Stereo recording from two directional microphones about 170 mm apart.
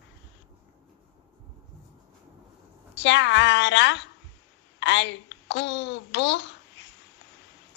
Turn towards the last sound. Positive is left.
turn(degrees=90)